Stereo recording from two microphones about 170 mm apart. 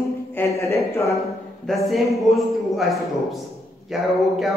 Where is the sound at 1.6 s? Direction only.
Centre (ahead or behind).